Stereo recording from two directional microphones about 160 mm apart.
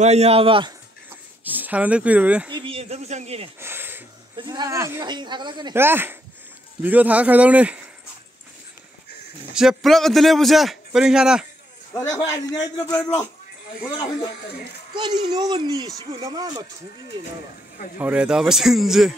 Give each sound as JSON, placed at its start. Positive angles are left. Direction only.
{"t": 0.0, "sound": "speech", "side_deg": -40}
{"t": 1.4, "sound": "speech", "side_deg": -10}
{"t": 2.5, "sound": "a sound", "side_deg": -35}
{"t": 3.5, "sound": "a sound", "side_deg": -15}
{"t": 4.4, "sound": "speech", "side_deg": -25}
{"t": 5.8, "sound": "speech", "side_deg": -15}
{"t": 9.5, "sound": "a man's voice", "side_deg": -5}
{"t": 11.9, "sound": "a man's voice", "side_deg": 15}
{"t": 12.2, "sound": "a man's voice", "side_deg": 25}
{"t": 15.0, "sound": "speech", "side_deg": -25}
{"t": 17.9, "sound": "a man's voice", "side_deg": -10}